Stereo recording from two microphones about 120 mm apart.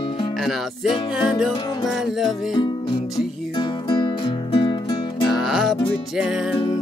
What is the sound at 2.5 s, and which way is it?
Music, 40° left (ahead or behind).